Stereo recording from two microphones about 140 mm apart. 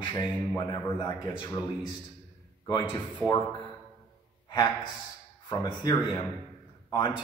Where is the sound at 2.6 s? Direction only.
35° left (ahead or behind).